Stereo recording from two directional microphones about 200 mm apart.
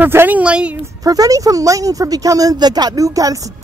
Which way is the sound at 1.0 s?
15° right (ahead or behind).